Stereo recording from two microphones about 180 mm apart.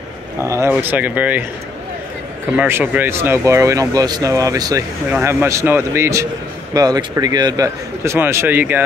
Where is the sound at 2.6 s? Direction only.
10° right (ahead or behind).